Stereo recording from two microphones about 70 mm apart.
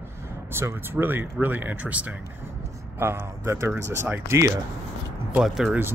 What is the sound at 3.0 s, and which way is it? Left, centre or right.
Speech, right.